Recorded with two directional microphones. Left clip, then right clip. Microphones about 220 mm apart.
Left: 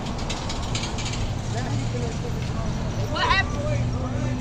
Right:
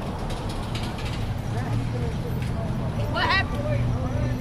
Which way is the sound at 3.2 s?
40° right (ahead or behind).